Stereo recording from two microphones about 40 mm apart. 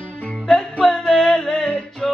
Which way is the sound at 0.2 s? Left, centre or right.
Left.